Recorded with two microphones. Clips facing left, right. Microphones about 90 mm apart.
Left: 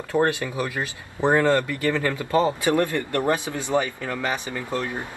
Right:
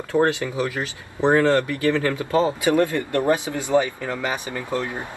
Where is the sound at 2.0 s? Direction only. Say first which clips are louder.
Right 1 dB; 20° right (ahead or behind).